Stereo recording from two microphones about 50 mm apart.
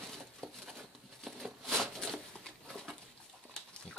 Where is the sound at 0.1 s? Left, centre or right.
Centre.